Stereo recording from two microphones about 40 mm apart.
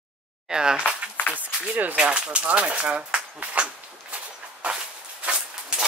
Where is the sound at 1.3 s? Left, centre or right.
Right.